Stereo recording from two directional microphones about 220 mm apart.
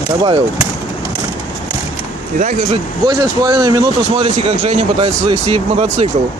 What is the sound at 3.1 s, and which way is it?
Speech, 20° right (ahead or behind).